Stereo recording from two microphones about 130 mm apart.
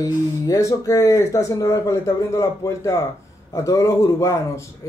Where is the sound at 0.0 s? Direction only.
25° left (ahead or behind).